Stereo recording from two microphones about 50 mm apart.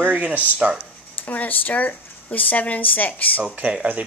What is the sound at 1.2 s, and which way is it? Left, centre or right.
Speech, left.